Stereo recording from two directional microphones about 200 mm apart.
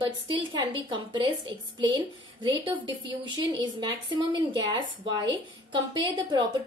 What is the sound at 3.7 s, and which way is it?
A woman's voice, 25° right (ahead or behind).